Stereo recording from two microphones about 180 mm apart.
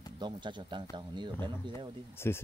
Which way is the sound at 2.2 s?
15° left (ahead or behind).